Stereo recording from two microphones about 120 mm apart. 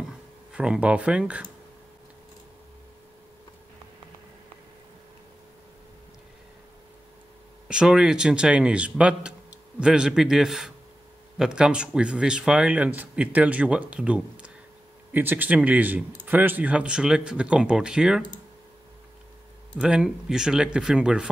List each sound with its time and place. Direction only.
0.5 s speech: 10° right (ahead or behind)
7.6 s a man's voice: 5° right (ahead or behind)
19.8 s speech: 5° right (ahead or behind)